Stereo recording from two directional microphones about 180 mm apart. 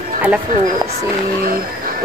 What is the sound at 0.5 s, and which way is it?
Speech, 50° right (ahead or behind).